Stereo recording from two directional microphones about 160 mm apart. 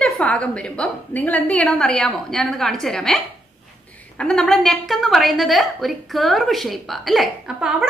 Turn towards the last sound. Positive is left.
turn(degrees=-5)  # may be behind; listen again after turning